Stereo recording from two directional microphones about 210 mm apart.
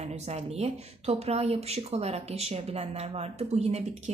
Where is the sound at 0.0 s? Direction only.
30° right (ahead or behind).